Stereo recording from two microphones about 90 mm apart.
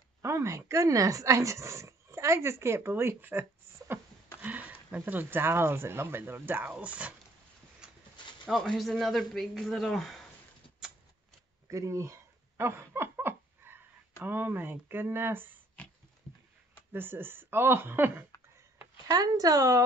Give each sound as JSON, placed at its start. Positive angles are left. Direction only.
{"t": 0.2, "sound": "speech", "side_deg": -35}
{"t": 7.8, "sound": "horse", "side_deg": -10}
{"t": 8.2, "sound": "a sound", "side_deg": 60}
{"t": 8.5, "sound": "a man's voice", "side_deg": 5}
{"t": 11.7, "sound": "a sound", "side_deg": -35}
{"t": 14.2, "sound": "speech", "side_deg": -20}
{"t": 15.8, "sound": "pig", "side_deg": 15}
{"t": 16.9, "sound": "speech", "side_deg": -25}
{"t": 19.0, "sound": "speech", "side_deg": -45}